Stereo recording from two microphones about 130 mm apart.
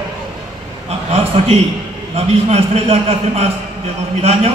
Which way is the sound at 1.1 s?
55° right (ahead or behind).